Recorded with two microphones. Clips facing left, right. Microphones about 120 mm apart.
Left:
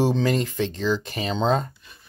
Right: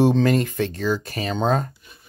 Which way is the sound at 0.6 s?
10° right (ahead or behind).